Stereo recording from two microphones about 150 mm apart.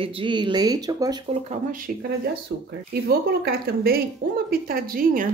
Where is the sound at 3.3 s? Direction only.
90° right.